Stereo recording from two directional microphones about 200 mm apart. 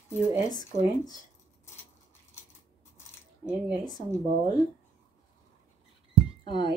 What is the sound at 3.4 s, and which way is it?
Speech, 20° left (ahead or behind).